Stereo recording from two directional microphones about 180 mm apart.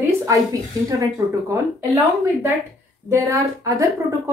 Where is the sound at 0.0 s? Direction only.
15° right (ahead or behind).